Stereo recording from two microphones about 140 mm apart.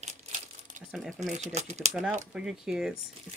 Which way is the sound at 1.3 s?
55° right (ahead or behind).